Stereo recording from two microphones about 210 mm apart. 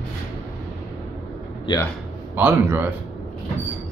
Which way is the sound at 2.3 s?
10° right (ahead or behind).